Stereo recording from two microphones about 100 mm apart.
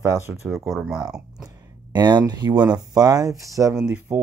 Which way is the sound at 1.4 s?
45° right (ahead or behind).